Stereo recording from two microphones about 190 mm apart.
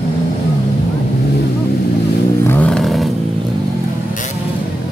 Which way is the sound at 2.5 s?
5° left (ahead or behind).